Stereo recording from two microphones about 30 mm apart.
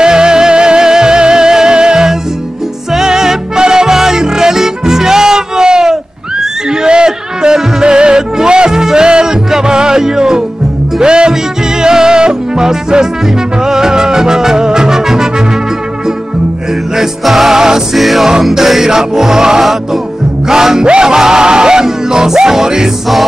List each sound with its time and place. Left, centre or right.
0.0 s music: right
6.7 s a sound: right
7.1 s music: right
17.2 s music: centre
17.6 s music: centre
17.9 s music: centre
18.8 s music: centre
19.6 s music: centre
20.4 s music: centre
20.8 s music: right